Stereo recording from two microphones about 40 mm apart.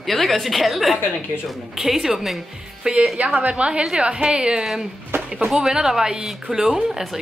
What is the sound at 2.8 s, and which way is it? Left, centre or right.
A woman's voice, centre.